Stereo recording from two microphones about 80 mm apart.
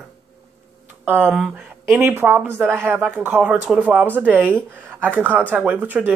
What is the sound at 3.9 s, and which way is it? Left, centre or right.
Speech, right.